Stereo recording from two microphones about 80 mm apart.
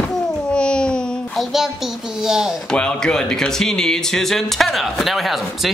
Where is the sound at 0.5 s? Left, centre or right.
Centre.